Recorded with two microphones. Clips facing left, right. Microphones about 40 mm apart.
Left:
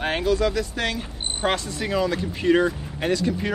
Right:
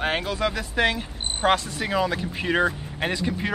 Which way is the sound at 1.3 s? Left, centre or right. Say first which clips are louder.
Right 3 dB; centre.